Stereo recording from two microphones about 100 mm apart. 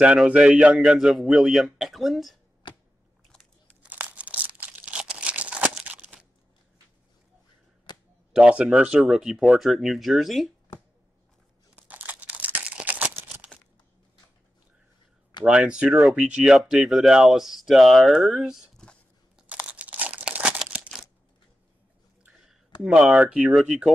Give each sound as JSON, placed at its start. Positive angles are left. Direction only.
{"t": 0.0, "sound": "speech", "side_deg": -10}
{"t": 3.9, "sound": "crumpling", "side_deg": -15}
{"t": 7.9, "sound": "a sound", "side_deg": 50}
{"t": 8.3, "sound": "speech", "side_deg": -10}
{"t": 11.7, "sound": "a sound", "side_deg": -15}
{"t": 15.4, "sound": "speech", "side_deg": -10}
{"t": 19.3, "sound": "crumpling", "side_deg": -10}
{"t": 22.8, "sound": "speech", "side_deg": -10}